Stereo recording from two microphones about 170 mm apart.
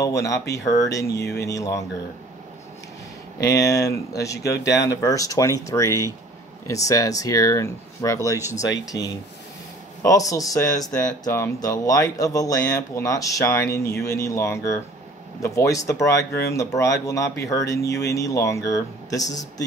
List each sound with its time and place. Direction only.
0.0 s speech: 20° left (ahead or behind)
3.3 s speech: 20° left (ahead or behind)
8.9 s speech: 90° left
10.0 s speech: 20° left (ahead or behind)